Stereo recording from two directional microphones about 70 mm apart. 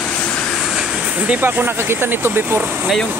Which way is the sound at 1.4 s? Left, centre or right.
Right.